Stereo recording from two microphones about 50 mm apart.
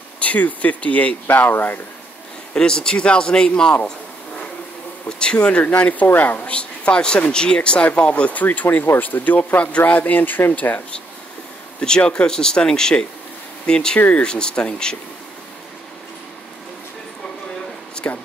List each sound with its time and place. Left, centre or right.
0.2 s speech: left
1.2 s speech: left
2.5 s speech: centre
5.0 s speech: centre; by 6.5 s left
6.5 s speech: left
8.6 s speech: left
11.8 s speech: centre
13.9 s speech: left
14.2 s speech: centre
17.9 s a sound: left